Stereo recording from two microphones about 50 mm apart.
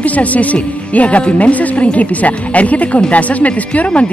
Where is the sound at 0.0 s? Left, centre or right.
Left.